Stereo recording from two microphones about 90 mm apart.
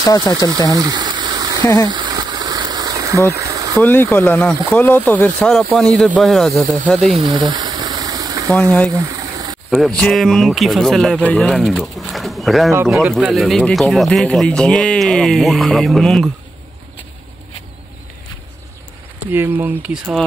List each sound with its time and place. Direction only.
0.0 s speech: 45° left (ahead or behind)
0.5 s a sound: 45° right (ahead or behind)
3.8 s speech: 20° left (ahead or behind)
6.2 s speech: centre (ahead or behind)
7.2 s a sound: 60° right (ahead or behind); by 9.6 s 45° right (ahead or behind)
9.7 s speech: 5° left (ahead or behind)
19.3 s speech: 25° right (ahead or behind)
19.8 s speech: 10° right (ahead or behind)